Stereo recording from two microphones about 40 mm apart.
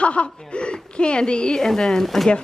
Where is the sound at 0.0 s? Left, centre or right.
Left.